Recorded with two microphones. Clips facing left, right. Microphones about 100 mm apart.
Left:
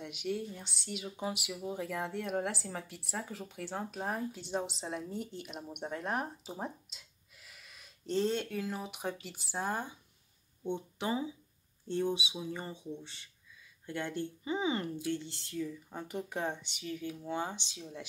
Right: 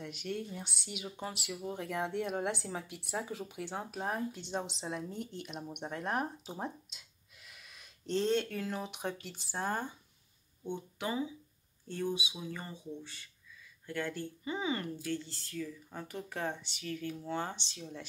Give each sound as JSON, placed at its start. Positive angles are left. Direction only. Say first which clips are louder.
{"t": 0.0, "sound": "a woman's voice", "louder": "left 2 dB", "side_deg": 10}
{"t": 0.6, "sound": "speech", "louder": "left 1 dB", "side_deg": -5}
{"t": 1.1, "sound": "speech", "louder": "left 3 dB", "side_deg": 10}
{"t": 10.6, "sound": "speech", "louder": "left 2 dB", "side_deg": 25}